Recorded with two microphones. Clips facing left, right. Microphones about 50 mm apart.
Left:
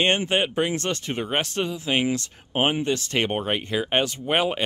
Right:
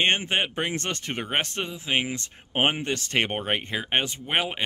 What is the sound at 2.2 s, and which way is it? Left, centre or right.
Speech, right.